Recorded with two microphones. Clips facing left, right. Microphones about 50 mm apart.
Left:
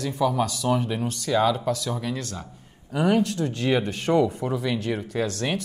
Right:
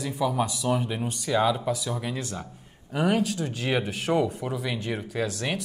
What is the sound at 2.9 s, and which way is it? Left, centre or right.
Speech, centre.